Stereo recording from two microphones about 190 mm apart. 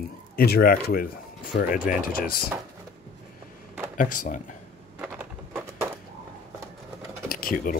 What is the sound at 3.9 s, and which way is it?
Speech, 45° left (ahead or behind).